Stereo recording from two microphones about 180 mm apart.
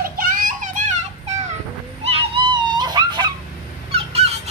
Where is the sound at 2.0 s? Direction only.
30° right (ahead or behind).